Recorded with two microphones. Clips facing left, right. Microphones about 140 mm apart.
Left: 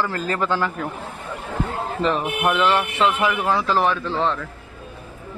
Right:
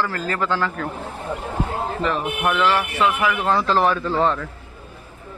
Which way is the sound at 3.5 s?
Centre (ahead or behind).